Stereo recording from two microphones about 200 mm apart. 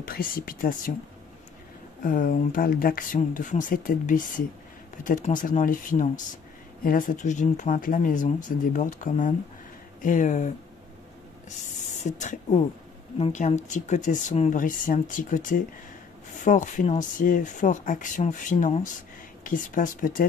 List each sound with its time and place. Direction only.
0.0 s speech: 45° left (ahead or behind)
2.0 s speech: 45° left (ahead or behind)
12.0 s speech: 35° left (ahead or behind)